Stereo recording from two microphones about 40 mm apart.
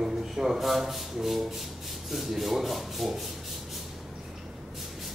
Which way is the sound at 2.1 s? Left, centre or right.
Centre.